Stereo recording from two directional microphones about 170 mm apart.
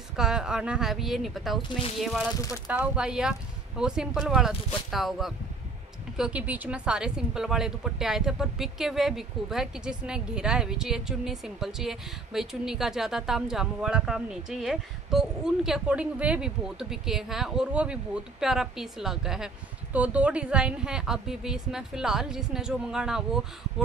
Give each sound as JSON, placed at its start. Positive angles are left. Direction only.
{"t": 0.1, "sound": "speech", "side_deg": -5}
{"t": 1.6, "sound": "speech", "side_deg": 30}
{"t": 2.0, "sound": "speech", "side_deg": 0}